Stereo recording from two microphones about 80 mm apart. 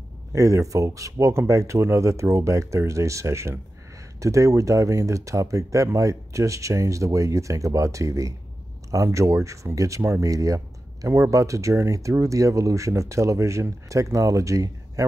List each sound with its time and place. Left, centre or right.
0.3 s speech: right